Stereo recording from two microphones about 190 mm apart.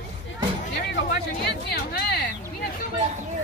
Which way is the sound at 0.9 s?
60° left (ahead or behind).